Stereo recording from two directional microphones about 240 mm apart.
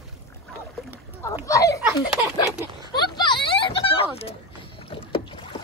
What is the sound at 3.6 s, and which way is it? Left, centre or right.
Rowboat, left.